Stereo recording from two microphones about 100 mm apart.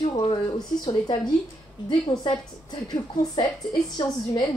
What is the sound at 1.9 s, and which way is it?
Speech, 50° left (ahead or behind).